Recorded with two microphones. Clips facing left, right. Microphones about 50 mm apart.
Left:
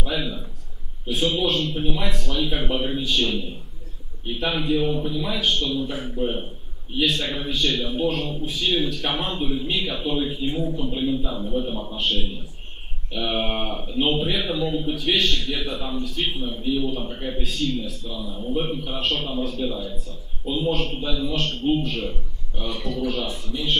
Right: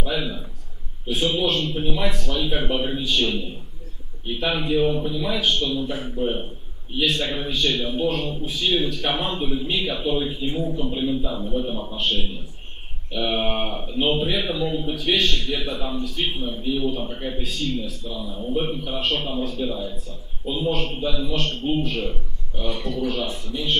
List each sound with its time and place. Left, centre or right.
0.0 s a man's voice: centre